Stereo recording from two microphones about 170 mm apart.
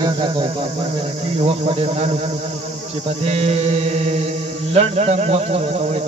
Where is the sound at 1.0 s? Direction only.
35° right (ahead or behind).